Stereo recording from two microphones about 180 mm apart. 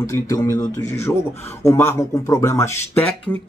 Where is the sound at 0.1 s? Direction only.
20° left (ahead or behind).